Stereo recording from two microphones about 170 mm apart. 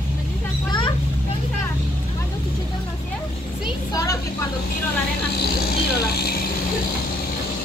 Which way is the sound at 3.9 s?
20° left (ahead or behind).